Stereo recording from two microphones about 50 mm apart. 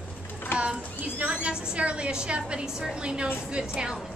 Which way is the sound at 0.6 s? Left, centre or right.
Right.